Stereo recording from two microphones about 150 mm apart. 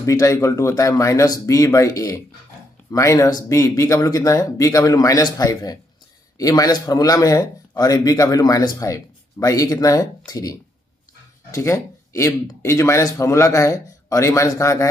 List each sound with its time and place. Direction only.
0.0 s speech: 20° left (ahead or behind)